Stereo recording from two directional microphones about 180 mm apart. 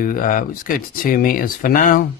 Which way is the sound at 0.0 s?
50° left (ahead or behind).